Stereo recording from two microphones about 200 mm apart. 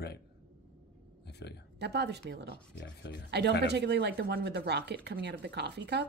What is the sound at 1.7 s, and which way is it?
Speech, 55° right (ahead or behind).